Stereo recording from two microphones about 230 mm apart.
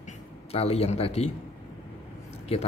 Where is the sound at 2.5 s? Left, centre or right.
Left.